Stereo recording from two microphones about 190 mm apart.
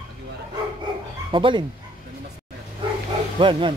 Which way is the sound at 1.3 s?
25° right (ahead or behind).